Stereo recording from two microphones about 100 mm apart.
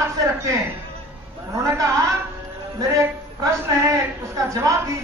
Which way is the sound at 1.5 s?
30° right (ahead or behind).